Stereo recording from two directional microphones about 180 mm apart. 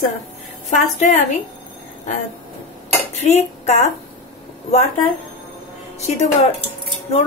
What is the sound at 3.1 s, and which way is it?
Dishes, 40° left (ahead or behind).